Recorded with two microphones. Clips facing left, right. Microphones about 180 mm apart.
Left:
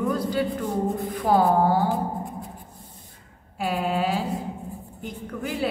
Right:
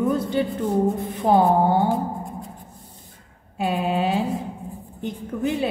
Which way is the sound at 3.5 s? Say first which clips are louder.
Right 2 dB; 20° right (ahead or behind).